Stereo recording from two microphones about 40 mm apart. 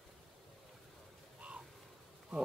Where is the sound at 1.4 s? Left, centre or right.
Right.